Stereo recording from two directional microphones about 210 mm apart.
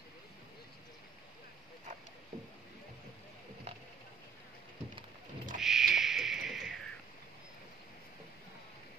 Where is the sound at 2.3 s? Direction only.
40° right (ahead or behind).